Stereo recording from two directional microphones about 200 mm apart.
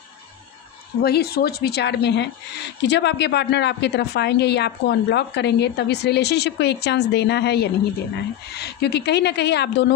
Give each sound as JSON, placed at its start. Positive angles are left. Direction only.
{"t": 1.0, "sound": "speech", "side_deg": 50}